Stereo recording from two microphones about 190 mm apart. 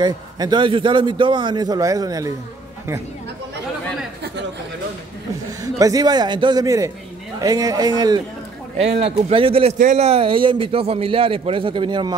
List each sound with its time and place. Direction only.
0.0 s a man's voice: 20° right (ahead or behind)
5.6 s a man's voice: 20° right (ahead or behind)
8.7 s a man's voice: 35° right (ahead or behind)